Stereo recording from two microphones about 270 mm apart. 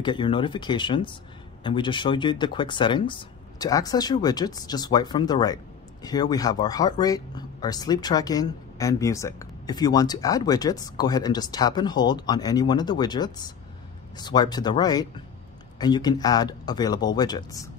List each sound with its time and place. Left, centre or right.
0.0 s speech: centre